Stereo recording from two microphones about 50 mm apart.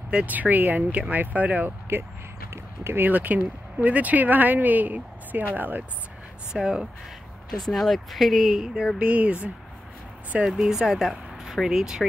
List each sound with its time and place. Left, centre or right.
0.3 s speech: right
1.9 s speech: right
2.5 s a sound: right
3.0 s speech: right
6.5 s speech: centre
7.5 s speech: centre
8.9 s speech: right
10.4 s speech: centre